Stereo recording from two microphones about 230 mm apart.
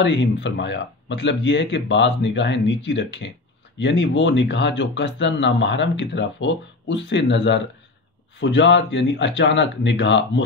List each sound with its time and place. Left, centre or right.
0.0 s speech: left